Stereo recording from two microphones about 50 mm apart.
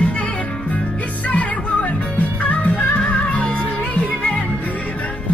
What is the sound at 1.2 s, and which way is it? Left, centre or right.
Music, left.